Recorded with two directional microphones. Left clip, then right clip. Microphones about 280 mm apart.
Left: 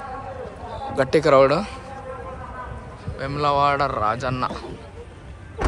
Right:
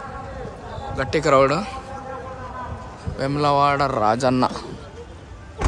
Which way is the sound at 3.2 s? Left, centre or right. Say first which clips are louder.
Right 2 dB; centre.